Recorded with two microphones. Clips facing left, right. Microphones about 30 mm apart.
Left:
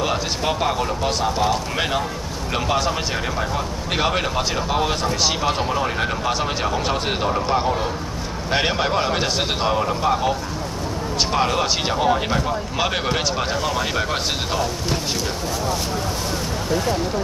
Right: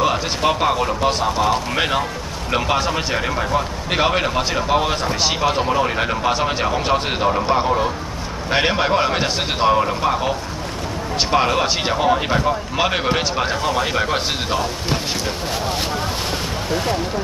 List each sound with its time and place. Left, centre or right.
0.4 s speech: centre